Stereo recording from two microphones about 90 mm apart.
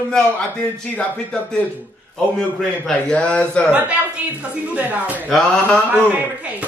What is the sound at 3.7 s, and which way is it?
A woman's voice, 15° right (ahead or behind).